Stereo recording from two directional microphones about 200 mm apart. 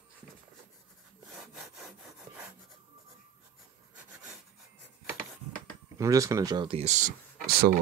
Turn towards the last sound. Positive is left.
turn(degrees=-50)  # may be behind; listen again after turning